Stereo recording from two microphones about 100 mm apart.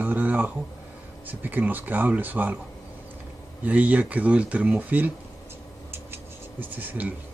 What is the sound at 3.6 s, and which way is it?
Speech, 15° right (ahead or behind).